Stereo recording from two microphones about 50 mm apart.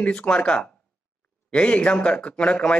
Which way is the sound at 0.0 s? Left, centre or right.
Left.